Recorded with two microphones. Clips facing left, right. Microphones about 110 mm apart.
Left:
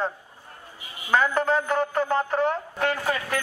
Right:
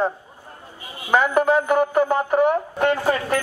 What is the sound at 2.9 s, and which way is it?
Speech, 30° right (ahead or behind).